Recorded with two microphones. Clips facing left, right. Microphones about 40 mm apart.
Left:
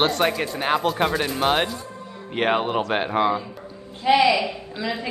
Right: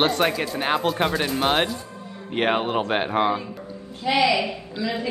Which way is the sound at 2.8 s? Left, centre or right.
Centre.